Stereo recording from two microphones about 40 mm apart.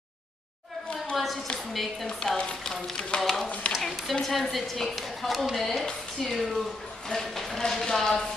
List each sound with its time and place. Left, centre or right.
1.1 s a sound: centre
1.7 s a woman's voice: centre
2.0 s a woman's voice: centre